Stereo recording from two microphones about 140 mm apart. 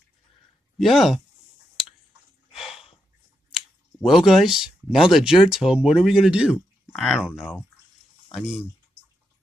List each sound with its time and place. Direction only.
0.7 s speech: centre (ahead or behind)
2.5 s snort: centre (ahead or behind)
3.5 s speech: 5° right (ahead or behind)